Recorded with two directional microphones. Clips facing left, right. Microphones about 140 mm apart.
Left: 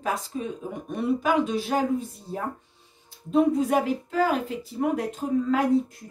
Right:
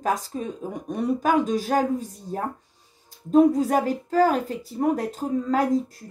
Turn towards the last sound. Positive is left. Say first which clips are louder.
# even
turn(degrees=-35)  # may be behind; listen again after turning